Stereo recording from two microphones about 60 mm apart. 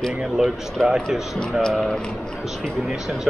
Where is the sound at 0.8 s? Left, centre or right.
Centre.